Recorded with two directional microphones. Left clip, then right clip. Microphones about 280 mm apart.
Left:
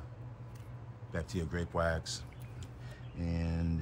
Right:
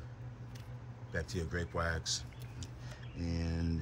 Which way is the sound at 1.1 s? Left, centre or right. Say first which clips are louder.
Even; centre.